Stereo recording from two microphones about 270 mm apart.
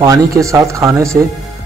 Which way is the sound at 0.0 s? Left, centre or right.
Centre.